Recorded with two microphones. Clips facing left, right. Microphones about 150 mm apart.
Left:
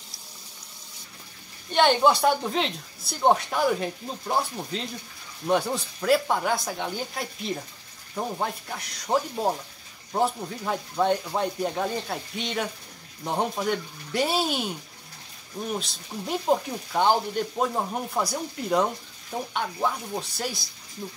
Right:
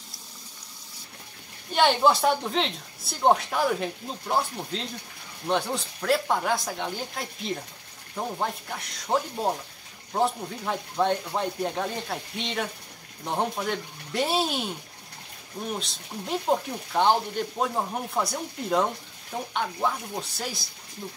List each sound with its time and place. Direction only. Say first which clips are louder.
1.7 s a woman's voice: left 1 dB; centre (ahead or behind)
15.7 s a woman's voice: left 2 dB; centre (ahead or behind)